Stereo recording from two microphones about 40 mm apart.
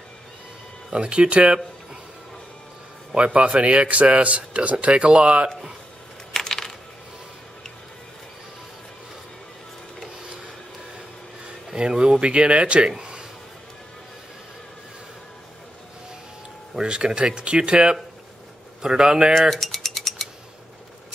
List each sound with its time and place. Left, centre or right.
0.9 s speech: right
3.2 s a man's voice: right
6.3 s coin: centre
11.7 s speech: right
12.9 s a sound: centre
16.7 s speech: right
19.5 s cutlery: centre